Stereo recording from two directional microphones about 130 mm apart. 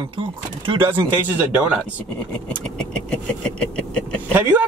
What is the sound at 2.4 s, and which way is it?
Vehicle, 5° left (ahead or behind).